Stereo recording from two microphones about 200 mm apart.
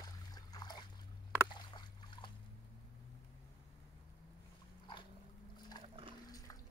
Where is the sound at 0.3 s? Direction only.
20° left (ahead or behind).